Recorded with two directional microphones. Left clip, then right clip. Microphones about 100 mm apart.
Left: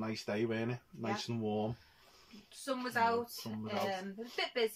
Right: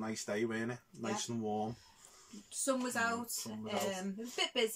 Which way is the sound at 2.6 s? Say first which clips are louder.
Left 1 dB; 40° right (ahead or behind).